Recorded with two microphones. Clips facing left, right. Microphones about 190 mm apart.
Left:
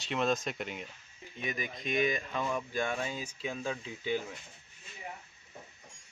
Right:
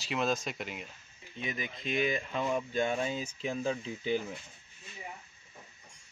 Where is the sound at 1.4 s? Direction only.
25° right (ahead or behind).